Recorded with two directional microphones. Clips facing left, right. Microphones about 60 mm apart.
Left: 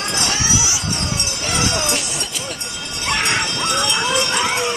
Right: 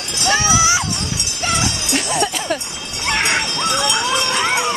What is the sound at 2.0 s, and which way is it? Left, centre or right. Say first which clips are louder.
Music: right 7 dB; right.